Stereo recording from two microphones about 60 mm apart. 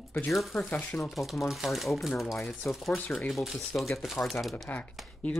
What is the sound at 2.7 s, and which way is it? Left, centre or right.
Speech, left.